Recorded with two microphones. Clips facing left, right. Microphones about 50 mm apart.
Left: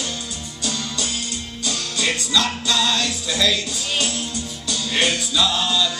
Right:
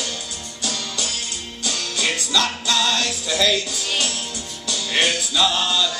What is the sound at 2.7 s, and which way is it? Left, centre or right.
Music, right.